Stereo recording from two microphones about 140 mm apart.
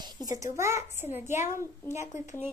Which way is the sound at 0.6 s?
20° right (ahead or behind).